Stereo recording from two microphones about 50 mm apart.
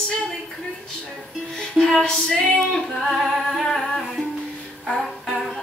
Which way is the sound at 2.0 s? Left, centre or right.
Centre.